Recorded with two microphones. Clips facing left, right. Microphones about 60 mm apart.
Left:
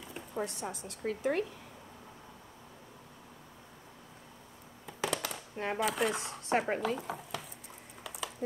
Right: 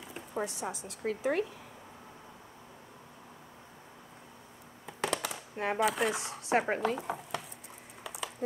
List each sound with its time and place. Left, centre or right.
0.0 s speech: centre
4.8 s speech: centre
8.0 s a sound: centre